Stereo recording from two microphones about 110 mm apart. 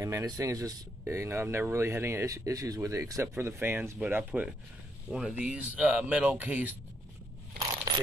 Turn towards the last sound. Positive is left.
turn(degrees=-35)  # may be behind; listen again after turning